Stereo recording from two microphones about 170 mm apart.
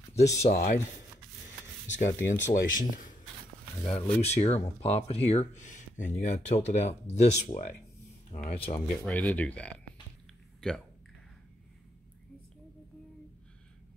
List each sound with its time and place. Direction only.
0.5 s speech: 45° left (ahead or behind)
2.0 s speech: 15° left (ahead or behind)
2.5 s speech: 50° left (ahead or behind)
3.8 s speech: 40° left (ahead or behind)
9.0 s speech: 10° left (ahead or behind)